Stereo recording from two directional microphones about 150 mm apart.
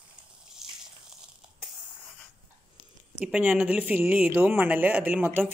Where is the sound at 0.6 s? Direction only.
Centre (ahead or behind).